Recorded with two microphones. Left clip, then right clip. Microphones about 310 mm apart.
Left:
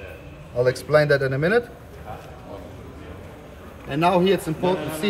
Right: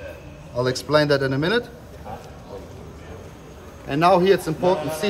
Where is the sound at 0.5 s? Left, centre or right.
Centre.